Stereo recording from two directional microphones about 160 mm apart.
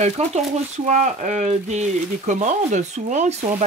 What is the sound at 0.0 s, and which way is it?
Speech, 45° right (ahead or behind).